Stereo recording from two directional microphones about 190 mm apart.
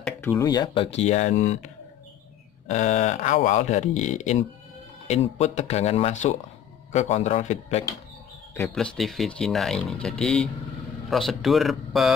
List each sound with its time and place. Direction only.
0.0 s speech: 10° left (ahead or behind)
0.8 s speech: 35° left (ahead or behind)
2.7 s speech: 40° left (ahead or behind)
8.7 s speech: centre (ahead or behind)